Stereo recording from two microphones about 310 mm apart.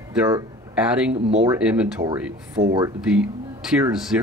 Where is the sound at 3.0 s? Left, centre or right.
Centre.